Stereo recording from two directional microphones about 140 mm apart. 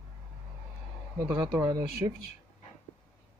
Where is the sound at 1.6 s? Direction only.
20° right (ahead or behind).